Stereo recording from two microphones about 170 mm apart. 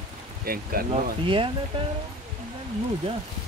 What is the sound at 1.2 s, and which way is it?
Speech, 30° right (ahead or behind).